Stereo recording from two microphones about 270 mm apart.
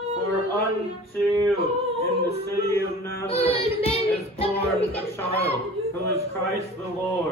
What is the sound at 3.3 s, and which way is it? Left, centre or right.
Child singing, left.